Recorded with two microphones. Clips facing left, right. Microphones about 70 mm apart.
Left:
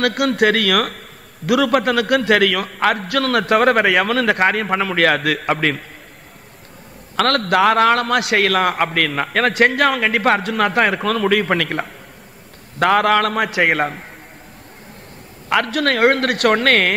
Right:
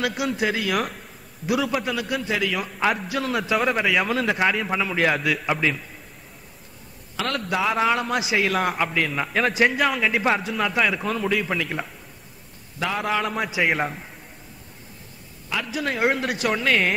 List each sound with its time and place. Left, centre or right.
0.0 s a man's voice: left
7.2 s a man's voice: left
15.5 s a man's voice: left